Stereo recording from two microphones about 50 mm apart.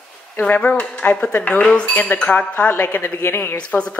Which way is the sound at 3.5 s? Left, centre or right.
Left.